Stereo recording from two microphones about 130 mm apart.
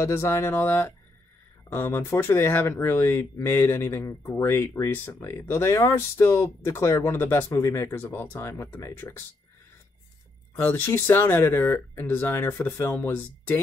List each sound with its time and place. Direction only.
0.0 s speech: 20° left (ahead or behind)
10.6 s speech: 15° left (ahead or behind)